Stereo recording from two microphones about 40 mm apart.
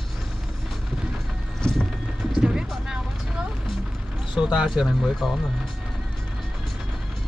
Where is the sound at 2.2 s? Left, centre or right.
Centre.